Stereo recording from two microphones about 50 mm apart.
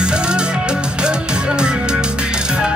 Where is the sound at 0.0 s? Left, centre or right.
Centre.